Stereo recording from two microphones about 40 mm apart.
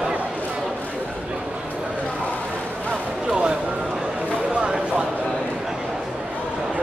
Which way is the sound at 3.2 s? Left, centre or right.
Centre.